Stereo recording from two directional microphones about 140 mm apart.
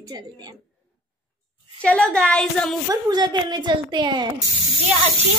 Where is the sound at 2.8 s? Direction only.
30° right (ahead or behind).